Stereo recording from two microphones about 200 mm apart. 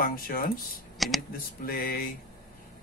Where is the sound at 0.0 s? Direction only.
45° left (ahead or behind).